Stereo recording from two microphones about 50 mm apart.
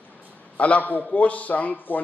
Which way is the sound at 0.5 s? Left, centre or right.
Left.